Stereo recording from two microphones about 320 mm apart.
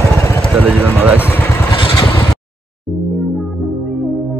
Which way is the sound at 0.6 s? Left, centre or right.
Centre.